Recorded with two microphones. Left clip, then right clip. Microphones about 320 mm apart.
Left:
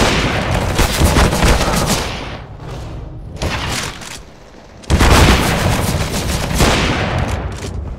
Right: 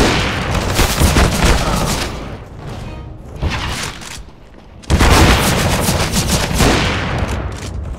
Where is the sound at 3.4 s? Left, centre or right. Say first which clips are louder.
Left 1 dB; centre.